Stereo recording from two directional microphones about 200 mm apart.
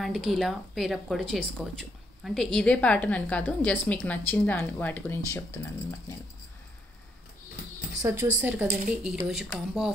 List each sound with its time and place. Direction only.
0.0 s speech: centre (ahead or behind)
8.0 s a woman's voice: 15° right (ahead or behind)